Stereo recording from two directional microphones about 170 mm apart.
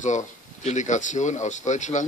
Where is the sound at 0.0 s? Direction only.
45° left (ahead or behind).